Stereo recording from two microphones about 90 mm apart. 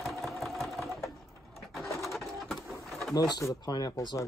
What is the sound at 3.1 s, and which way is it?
Speech, 50° left (ahead or behind).